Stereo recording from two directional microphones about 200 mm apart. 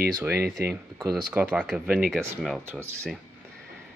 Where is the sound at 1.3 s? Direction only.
10° right (ahead or behind).